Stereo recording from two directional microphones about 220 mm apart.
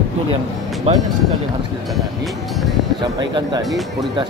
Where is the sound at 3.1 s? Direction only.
20° right (ahead or behind).